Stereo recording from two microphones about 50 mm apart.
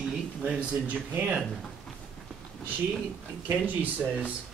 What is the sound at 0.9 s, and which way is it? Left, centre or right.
Speech, right.